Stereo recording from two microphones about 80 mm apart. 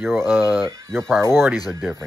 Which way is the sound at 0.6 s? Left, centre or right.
Right.